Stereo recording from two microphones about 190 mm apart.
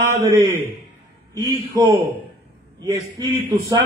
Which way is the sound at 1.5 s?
20° right (ahead or behind).